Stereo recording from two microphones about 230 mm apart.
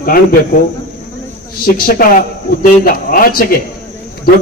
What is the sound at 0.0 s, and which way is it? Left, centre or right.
Speech, left.